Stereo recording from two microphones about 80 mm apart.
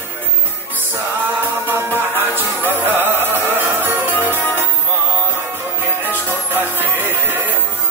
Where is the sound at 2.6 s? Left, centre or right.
Right.